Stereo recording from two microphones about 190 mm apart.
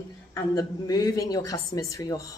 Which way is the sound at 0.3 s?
15° left (ahead or behind).